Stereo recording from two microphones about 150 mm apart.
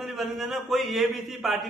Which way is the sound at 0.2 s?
Centre (ahead or behind).